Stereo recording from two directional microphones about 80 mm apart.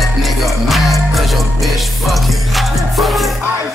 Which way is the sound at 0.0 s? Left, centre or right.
Centre.